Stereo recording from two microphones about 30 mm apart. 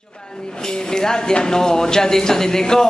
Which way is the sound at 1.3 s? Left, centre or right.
Left.